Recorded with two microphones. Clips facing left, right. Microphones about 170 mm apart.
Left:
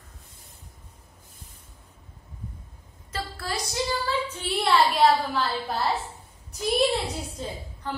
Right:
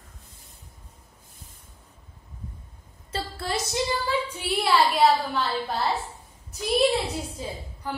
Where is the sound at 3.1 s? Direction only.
25° right (ahead or behind).